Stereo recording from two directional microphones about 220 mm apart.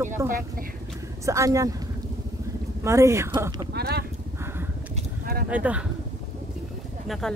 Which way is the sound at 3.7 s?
45° right (ahead or behind).